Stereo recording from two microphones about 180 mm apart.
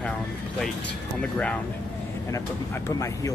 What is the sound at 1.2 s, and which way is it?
Speech, 5° left (ahead or behind).